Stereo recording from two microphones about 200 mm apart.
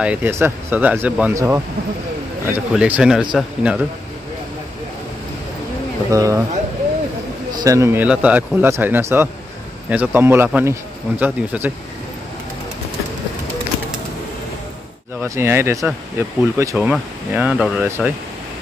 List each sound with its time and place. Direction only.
0.0 s speech: 10° right (ahead or behind)
6.1 s speech: 15° right (ahead or behind)
7.6 s speech: 15° right (ahead or behind)
15.2 s speech: 15° right (ahead or behind)